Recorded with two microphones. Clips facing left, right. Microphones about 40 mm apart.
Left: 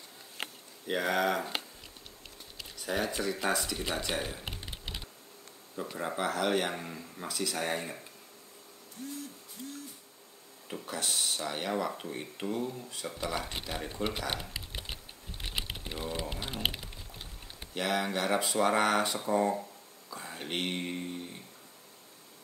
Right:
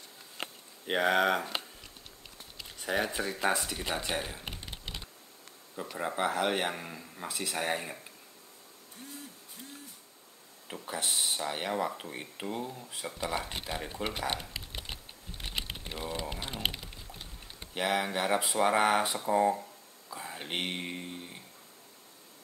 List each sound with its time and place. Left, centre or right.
0.8 s speech: right
2.9 s speech: centre
3.7 s typing: centre
5.8 s speech: centre
6.1 s speech: right
6.7 s speech: centre
7.2 s speech: right
9.0 s speech: right
10.7 s speech: centre
12.6 s speech: centre
14.3 s typing: centre
17.7 s speech: centre